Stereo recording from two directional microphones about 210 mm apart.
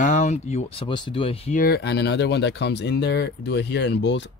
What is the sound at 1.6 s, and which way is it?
Speech, 50° left (ahead or behind).